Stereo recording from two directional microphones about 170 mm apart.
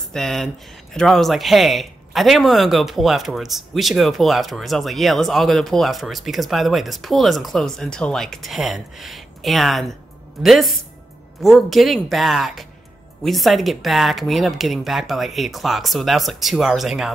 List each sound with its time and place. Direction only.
0.1 s speech: centre (ahead or behind)